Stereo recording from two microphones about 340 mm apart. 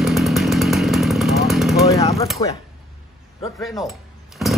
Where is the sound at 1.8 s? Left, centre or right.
Centre.